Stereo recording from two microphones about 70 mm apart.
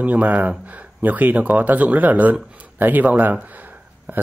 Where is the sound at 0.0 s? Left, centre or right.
Right.